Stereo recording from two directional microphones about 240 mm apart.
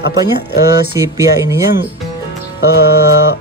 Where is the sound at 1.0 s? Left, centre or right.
Centre.